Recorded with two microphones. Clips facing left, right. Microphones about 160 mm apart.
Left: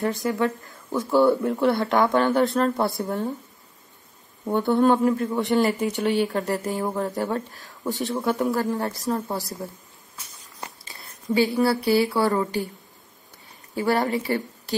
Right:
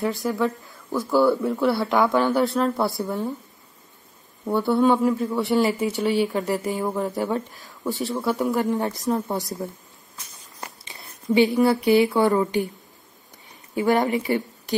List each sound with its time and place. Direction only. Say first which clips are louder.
0.2 s speech: even; centre (ahead or behind)
4.5 s speech: even; 5° right (ahead or behind)
8.0 s speech: even; centre (ahead or behind)
8.5 s speech: right 2 dB; 20° right (ahead or behind)
10.6 s speech: even; 20° right (ahead or behind)
13.7 s speech: right 2 dB; 15° right (ahead or behind)